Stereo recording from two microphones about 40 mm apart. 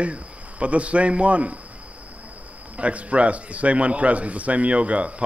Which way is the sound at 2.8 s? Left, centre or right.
Right.